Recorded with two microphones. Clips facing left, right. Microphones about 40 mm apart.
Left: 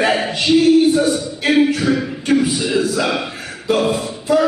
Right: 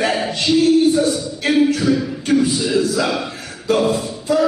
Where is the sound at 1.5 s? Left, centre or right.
Left.